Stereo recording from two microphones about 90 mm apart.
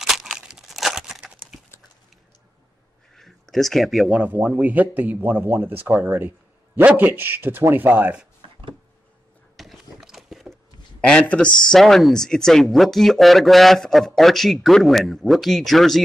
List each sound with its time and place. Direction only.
0.1 s crumpling: 5° right (ahead or behind)
3.2 s speech: 5° left (ahead or behind)
4.2 s speech: 20° right (ahead or behind)
9.6 s a sound: centre (ahead or behind)
11.0 s speech: 15° left (ahead or behind)